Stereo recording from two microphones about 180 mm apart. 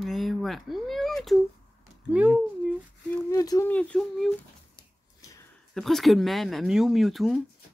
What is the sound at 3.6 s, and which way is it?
Speech, 5° left (ahead or behind).